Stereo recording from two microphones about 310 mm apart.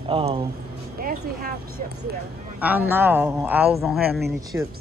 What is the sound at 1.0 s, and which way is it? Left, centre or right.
Speech, right.